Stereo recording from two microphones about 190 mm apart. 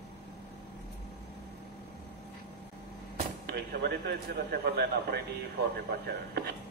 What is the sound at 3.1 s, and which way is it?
Speech, 60° right (ahead or behind).